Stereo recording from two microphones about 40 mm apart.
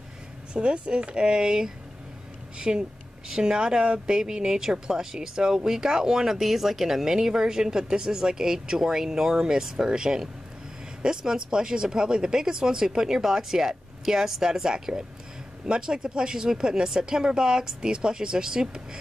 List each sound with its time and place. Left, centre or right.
0.5 s speech: right